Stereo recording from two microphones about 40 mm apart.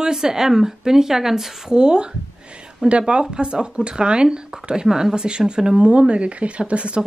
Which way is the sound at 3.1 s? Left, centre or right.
Right.